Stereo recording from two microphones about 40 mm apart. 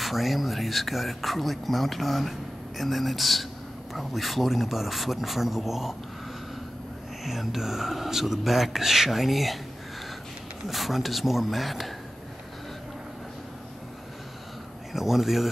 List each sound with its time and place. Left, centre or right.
0.0 s speech: centre
7.2 s speech: centre
10.7 s speech: centre
14.9 s speech: centre